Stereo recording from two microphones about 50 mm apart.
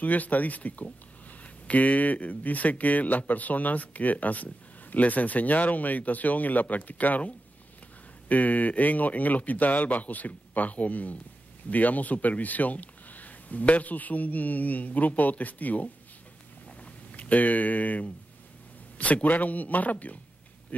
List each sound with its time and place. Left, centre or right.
0.0 s speech: left